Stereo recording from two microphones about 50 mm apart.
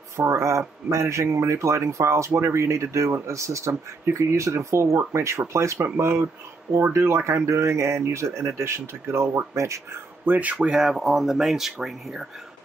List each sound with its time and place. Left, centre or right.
0.2 s speech: right
5.9 s speech: right
6.9 s speech: right
10.2 s speech: right
10.7 s speech: centre